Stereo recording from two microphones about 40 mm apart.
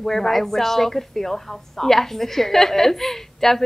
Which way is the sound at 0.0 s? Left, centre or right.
Centre.